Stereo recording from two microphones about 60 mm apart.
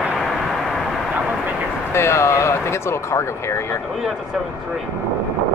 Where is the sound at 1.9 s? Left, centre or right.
Left.